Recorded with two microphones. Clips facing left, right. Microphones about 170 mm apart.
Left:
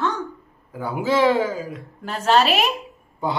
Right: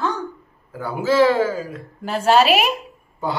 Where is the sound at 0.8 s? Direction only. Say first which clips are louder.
Right 2 dB; 20° left (ahead or behind).